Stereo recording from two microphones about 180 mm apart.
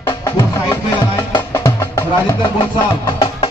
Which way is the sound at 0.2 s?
25° left (ahead or behind).